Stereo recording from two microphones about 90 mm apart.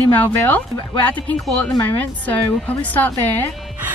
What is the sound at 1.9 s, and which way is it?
Speech, 20° left (ahead or behind).